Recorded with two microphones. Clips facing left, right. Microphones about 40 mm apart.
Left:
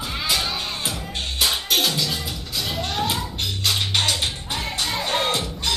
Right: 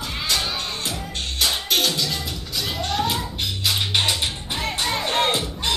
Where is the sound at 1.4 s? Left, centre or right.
Centre.